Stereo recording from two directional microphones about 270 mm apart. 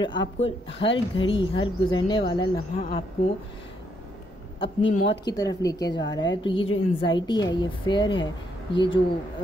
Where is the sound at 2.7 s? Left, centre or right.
Left.